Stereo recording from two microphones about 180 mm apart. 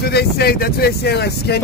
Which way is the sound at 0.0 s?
60° left (ahead or behind).